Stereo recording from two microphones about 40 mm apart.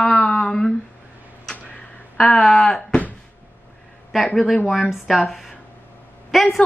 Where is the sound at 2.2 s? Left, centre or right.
Centre.